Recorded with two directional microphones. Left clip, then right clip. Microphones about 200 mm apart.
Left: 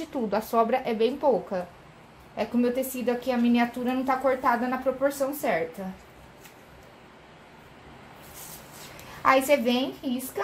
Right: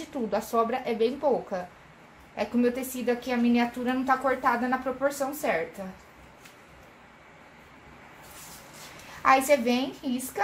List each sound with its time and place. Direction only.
0.3 s a woman's voice: 25° left (ahead or behind)
9.2 s a woman's voice: 25° left (ahead or behind)